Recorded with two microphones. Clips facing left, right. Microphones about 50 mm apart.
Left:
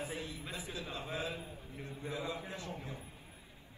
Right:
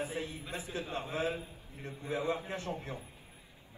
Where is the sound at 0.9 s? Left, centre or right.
Right.